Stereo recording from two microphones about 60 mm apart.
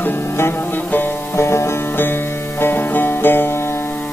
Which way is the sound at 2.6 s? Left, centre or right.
Left.